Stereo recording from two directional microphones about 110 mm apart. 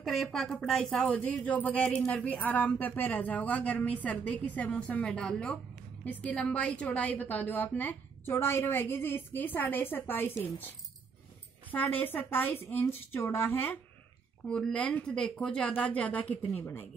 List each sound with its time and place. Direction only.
0.0 s a woman's voice: centre (ahead or behind); by 10.7 s 20° left (ahead or behind)
11.7 s speech: 15° left (ahead or behind)
14.5 s speech: 10° left (ahead or behind)